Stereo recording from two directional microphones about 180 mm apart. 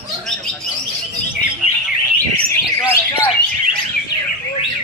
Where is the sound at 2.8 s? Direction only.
25° left (ahead or behind).